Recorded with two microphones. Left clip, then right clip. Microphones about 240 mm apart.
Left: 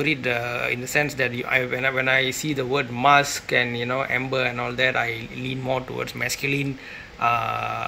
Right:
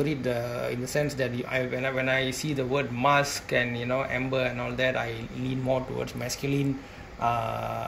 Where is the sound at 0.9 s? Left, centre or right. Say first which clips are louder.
Left 5 dB; centre.